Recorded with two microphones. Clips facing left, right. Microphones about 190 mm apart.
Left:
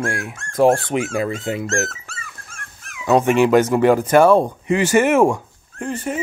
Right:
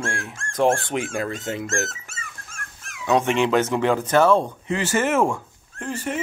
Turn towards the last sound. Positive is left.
turn(degrees=5)  # may be behind; listen again after turning